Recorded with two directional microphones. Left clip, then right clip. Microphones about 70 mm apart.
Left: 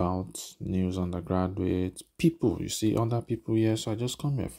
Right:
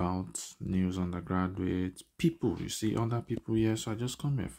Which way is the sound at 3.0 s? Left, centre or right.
Left.